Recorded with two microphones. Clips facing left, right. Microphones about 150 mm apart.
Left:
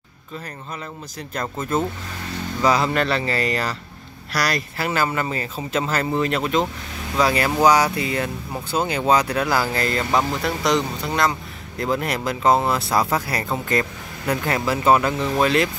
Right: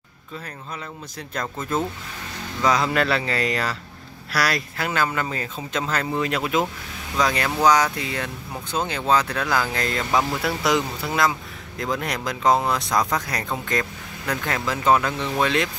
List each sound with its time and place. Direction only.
1.3 s speech: 5° left (ahead or behind)